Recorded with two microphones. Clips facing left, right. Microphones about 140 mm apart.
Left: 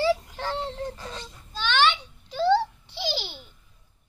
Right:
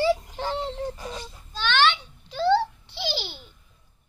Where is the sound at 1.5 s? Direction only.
10° left (ahead or behind).